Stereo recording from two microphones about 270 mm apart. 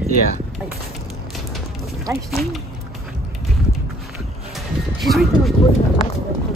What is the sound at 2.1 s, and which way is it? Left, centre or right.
Speech, centre.